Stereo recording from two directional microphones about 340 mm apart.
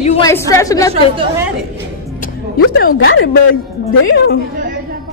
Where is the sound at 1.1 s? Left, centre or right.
Centre.